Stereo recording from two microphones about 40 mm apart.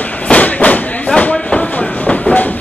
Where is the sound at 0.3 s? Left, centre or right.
Left.